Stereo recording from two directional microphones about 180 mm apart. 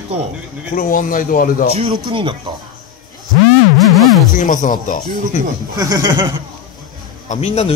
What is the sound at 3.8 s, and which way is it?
Music, centre (ahead or behind).